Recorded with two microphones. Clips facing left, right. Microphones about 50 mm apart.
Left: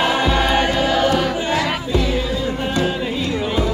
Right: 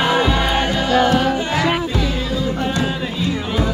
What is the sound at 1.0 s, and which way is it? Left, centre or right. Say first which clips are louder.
Choir: right 2 dB; centre.